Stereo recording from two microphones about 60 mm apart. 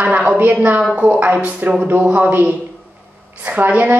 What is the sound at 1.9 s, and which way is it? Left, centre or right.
A woman's voice, right.